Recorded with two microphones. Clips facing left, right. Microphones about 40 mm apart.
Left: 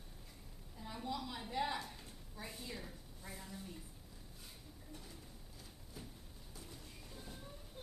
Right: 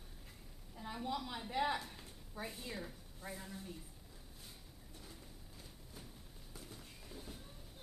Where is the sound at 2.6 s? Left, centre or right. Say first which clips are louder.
Right 2 dB; centre.